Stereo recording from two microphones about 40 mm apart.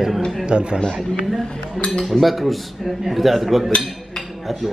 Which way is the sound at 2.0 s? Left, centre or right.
Centre.